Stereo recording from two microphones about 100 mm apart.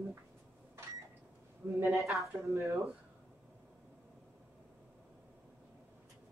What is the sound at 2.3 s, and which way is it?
Speech, 30° right (ahead or behind).